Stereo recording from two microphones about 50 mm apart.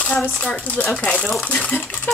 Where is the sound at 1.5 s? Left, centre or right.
Left.